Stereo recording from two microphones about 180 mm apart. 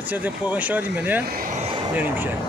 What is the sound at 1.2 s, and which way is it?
Speech, 55° right (ahead or behind).